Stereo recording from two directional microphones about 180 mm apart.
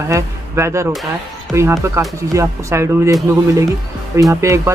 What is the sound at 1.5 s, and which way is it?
Speech, centre (ahead or behind).